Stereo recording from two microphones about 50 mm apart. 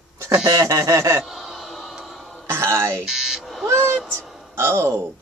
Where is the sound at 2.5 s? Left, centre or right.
Right.